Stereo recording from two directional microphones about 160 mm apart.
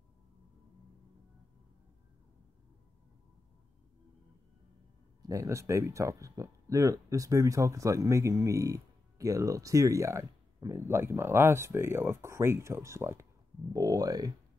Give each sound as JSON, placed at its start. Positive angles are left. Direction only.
{"t": 5.2, "sound": "speech", "side_deg": -20}